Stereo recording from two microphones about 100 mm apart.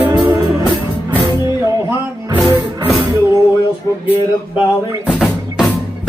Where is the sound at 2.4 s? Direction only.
50° right (ahead or behind).